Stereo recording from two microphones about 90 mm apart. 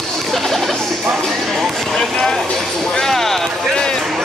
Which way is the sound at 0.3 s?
Centre (ahead or behind).